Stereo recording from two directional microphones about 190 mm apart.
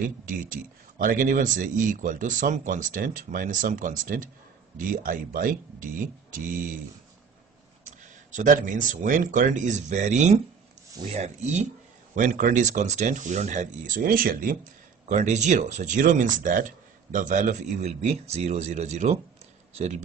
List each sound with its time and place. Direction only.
0.2 s speech: 45° right (ahead or behind)
7.8 s speech: 40° right (ahead or behind)